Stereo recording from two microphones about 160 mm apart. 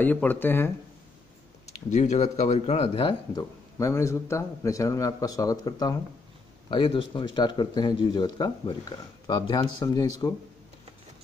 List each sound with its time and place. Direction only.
0.0 s speech: 10° left (ahead or behind)
1.7 s speech: 45° left (ahead or behind)
3.7 s speech: 20° left (ahead or behind)